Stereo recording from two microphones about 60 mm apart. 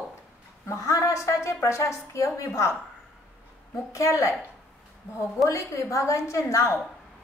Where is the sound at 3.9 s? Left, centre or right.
Left.